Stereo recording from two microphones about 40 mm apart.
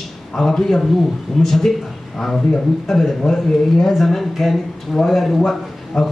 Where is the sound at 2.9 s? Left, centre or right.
Centre.